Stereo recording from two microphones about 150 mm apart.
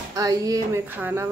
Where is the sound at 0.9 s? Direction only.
10° right (ahead or behind).